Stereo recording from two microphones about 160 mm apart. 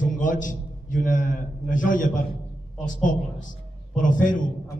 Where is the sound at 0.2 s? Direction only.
55° left (ahead or behind).